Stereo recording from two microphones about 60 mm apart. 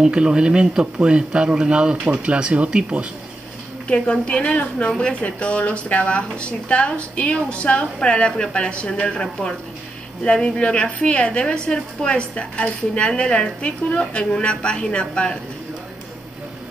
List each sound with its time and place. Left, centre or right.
0.1 s speech: centre
3.8 s a woman's voice: centre